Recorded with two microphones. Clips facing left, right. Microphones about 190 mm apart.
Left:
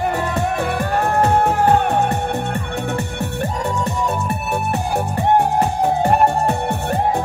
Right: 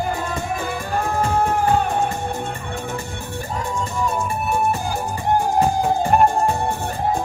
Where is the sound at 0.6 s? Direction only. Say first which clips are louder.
Left 5 dB; 65° left (ahead or behind).